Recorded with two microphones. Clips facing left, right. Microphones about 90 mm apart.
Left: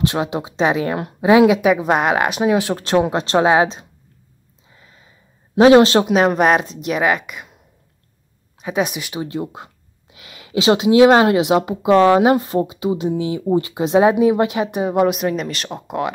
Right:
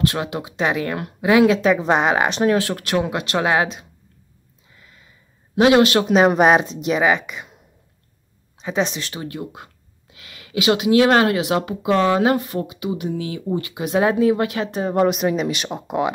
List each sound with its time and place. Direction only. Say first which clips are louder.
0.0 s speech: left 2 dB; 20° left (ahead or behind)
1.6 s speech: left 1 dB; 5° left (ahead or behind)
2.6 s speech: left 4 dB; 25° left (ahead or behind)
4.7 s a sound: left 1 dB; 25° left (ahead or behind)
5.6 s speech: left 4 dB; 30° left (ahead or behind)
6.0 s speech: right 1 dB; centre (ahead or behind)
8.5 s speech: left 1 dB; 10° left (ahead or behind)